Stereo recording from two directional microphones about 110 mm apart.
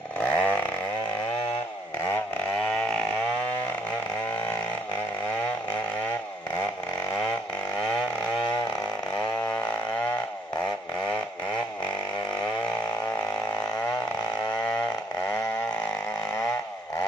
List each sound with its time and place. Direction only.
0.2 s chainsaw: 15° left (ahead or behind)